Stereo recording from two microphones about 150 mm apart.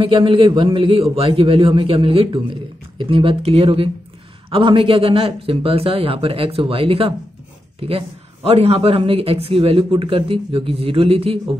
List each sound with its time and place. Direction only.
0.0 s speech: 35° right (ahead or behind)